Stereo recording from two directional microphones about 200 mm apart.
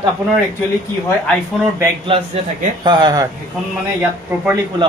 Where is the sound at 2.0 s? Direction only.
25° right (ahead or behind).